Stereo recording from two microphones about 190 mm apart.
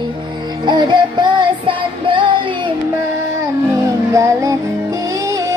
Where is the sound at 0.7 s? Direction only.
25° right (ahead or behind).